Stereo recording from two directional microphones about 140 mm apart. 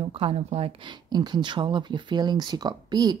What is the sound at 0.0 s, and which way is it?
Speech, 40° right (ahead or behind).